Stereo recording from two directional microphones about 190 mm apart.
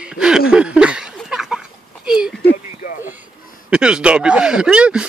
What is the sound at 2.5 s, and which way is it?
Radio, 45° left (ahead or behind).